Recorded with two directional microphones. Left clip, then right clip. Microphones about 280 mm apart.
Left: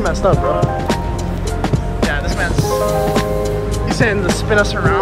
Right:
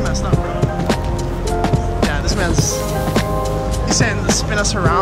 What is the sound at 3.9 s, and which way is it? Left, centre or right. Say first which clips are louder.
Speech: left 2 dB; centre.